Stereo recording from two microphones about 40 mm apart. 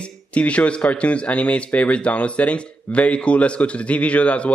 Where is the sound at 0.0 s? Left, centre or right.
Left.